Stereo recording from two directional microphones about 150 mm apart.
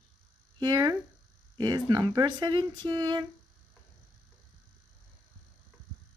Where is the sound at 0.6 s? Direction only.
25° right (ahead or behind).